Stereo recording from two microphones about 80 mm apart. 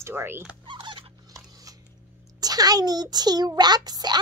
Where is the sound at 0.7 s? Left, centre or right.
Right.